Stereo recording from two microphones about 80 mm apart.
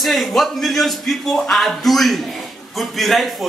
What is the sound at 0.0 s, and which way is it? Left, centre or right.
A man's voice, centre.